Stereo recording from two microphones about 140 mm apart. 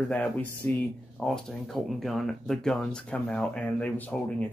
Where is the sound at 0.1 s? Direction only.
10° left (ahead or behind).